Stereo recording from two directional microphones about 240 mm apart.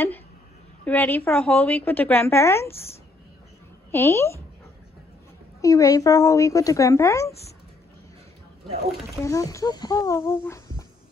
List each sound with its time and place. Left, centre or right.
0.8 s a woman's voice: centre
3.9 s a woman's voice: centre
5.6 s a woman's voice: centre
9.2 s a woman's voice: centre